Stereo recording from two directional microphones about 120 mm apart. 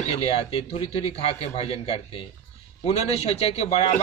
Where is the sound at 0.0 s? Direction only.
55° left (ahead or behind).